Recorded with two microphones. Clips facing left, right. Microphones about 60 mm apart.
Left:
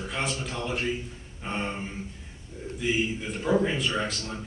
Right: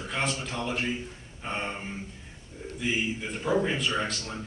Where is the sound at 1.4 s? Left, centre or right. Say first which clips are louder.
Left 1 dB; centre.